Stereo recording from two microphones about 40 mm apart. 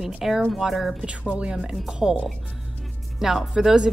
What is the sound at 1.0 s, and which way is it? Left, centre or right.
Speech, right.